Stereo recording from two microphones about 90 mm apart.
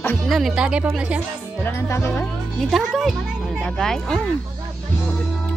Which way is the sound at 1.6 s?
30° left (ahead or behind).